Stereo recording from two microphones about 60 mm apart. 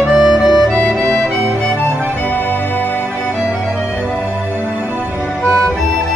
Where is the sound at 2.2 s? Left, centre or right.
Left.